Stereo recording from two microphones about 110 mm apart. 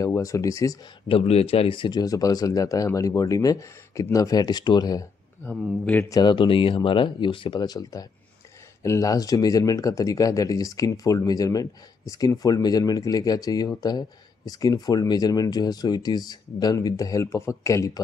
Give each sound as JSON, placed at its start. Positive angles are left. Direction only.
{"t": 0.0, "sound": "speech", "side_deg": 30}
{"t": 1.0, "sound": "speech", "side_deg": 60}
{"t": 5.4, "sound": "speech", "side_deg": 15}
{"t": 6.0, "sound": "speech", "side_deg": 35}
{"t": 6.3, "sound": "speech", "side_deg": 55}